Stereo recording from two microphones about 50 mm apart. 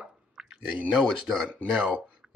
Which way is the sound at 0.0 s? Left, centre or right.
Centre.